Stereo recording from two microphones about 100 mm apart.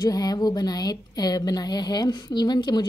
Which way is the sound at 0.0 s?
40° left (ahead or behind).